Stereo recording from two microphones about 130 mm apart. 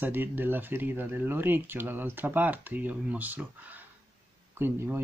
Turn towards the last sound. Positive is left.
turn(degrees=-15)  # may be behind; listen again after turning